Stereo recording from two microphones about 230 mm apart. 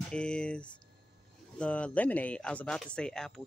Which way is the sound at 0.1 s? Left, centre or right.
Centre.